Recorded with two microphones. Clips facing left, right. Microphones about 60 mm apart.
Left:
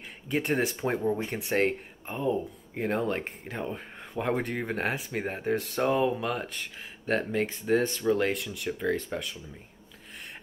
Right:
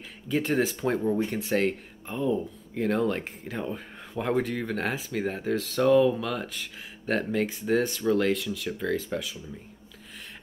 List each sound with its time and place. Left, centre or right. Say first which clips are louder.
0.3 s speech: right 2 dB; centre
4.6 s speech: even; centre
6.4 s speech: even; centre
9.1 s speech: right 2 dB; centre